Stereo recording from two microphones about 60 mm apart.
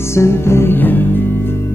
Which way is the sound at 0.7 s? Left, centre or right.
Left.